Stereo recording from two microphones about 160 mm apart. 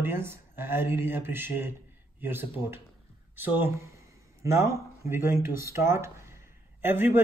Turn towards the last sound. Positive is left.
turn(degrees=-15)  # may be behind; listen again after turning